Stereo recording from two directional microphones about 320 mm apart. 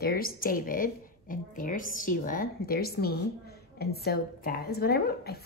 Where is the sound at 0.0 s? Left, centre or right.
Left.